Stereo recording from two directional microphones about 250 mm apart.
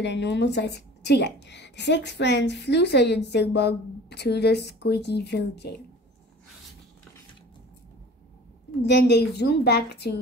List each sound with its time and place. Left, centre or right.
0.0 s a woman's voice: left
8.8 s a woman's voice: left